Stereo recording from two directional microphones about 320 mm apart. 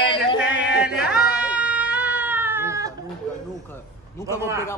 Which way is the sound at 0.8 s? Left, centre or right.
Centre.